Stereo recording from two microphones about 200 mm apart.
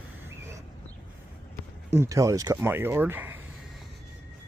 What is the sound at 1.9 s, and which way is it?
Speech, 15° right (ahead or behind).